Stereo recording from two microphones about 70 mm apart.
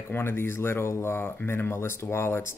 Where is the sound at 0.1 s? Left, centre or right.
Left.